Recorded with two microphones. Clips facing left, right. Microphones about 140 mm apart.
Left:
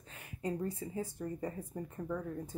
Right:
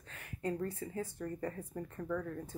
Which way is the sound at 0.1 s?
15° left (ahead or behind).